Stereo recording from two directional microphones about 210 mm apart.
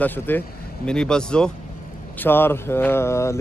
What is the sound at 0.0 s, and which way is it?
Speech, 10° left (ahead or behind).